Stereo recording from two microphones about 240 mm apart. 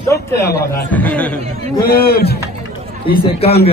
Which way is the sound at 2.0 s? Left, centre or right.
Left.